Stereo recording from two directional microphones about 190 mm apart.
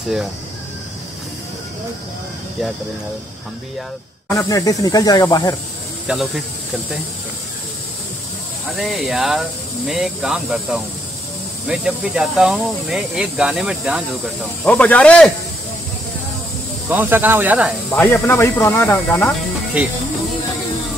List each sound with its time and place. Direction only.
4.3 s speech: 15° left (ahead or behind)
6.0 s speech: centre (ahead or behind)
8.7 s speech: centre (ahead or behind)
16.9 s speech: 10° right (ahead or behind)
18.0 s speech: 15° left (ahead or behind)